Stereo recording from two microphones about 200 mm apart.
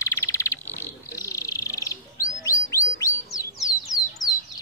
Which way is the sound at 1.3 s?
15° left (ahead or behind).